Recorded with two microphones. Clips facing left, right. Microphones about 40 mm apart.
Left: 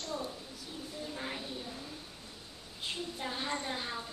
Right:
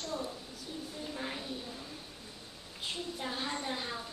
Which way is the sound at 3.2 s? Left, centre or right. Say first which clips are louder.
Left 1 dB; centre.